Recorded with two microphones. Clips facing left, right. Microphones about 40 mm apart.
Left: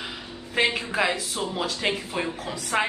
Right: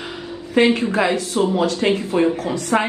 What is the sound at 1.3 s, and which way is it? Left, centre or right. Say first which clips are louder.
Speech: right 11 dB; right.